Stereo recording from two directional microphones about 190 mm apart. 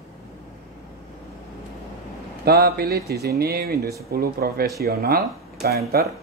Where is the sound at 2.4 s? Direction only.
55° right (ahead or behind).